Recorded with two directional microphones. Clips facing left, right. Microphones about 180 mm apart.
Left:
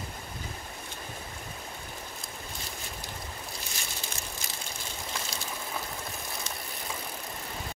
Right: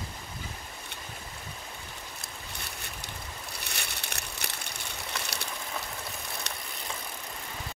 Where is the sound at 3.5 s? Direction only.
65° right (ahead or behind).